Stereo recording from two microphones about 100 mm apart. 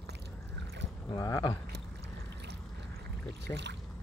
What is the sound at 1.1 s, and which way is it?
Speech, 35° left (ahead or behind).